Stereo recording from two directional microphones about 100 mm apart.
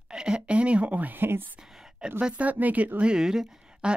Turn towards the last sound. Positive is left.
turn(degrees=-5)  # may be behind; listen again after turning